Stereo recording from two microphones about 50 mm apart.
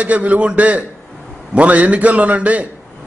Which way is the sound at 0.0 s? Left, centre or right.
Right.